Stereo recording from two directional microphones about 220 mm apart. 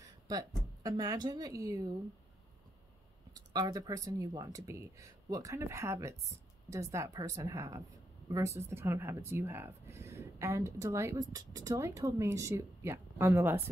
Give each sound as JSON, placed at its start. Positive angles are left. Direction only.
{"t": 0.8, "sound": "speech", "side_deg": -15}
{"t": 3.3, "sound": "speech", "side_deg": -20}